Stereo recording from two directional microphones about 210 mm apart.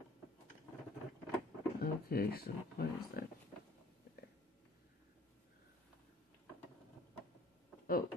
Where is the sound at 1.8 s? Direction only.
45° left (ahead or behind).